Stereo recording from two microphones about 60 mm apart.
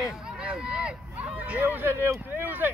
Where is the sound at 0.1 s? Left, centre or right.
Centre.